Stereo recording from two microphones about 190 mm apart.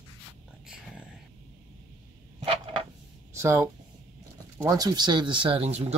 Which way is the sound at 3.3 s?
15° right (ahead or behind).